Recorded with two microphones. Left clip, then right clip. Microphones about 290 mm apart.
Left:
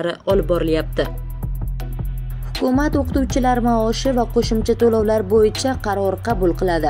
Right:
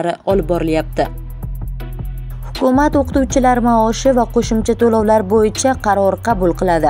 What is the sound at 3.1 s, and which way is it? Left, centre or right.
Speech, right.